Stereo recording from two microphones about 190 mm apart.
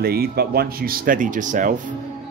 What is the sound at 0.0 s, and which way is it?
Speech, 55° right (ahead or behind).